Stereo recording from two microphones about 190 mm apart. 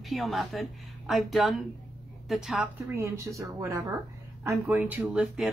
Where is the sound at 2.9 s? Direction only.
15° right (ahead or behind).